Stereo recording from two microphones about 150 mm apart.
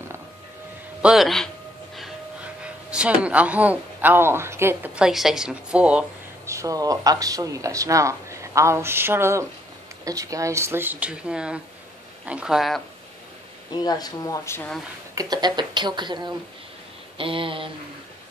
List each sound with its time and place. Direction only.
1.0 s speech: centre (ahead or behind)
6.4 s speech: 20° right (ahead or behind); by 12.8 s centre (ahead or behind)
13.7 s speech: 25° left (ahead or behind)
15.1 s speech: 30° right (ahead or behind)
17.2 s a sound: 35° right (ahead or behind)